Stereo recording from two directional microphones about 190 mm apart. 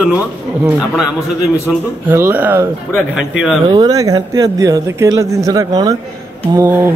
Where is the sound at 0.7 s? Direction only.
5° right (ahead or behind).